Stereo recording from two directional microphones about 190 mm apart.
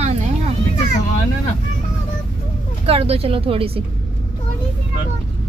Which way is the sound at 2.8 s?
30° right (ahead or behind).